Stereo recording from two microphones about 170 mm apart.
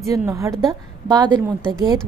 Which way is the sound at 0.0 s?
15° right (ahead or behind).